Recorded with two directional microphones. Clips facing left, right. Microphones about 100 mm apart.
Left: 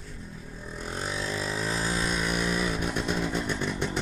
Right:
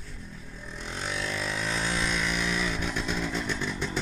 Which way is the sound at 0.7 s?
40° left (ahead or behind).